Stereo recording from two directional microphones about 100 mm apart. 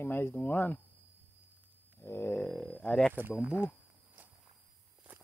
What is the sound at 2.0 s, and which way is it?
Speech, 25° left (ahead or behind).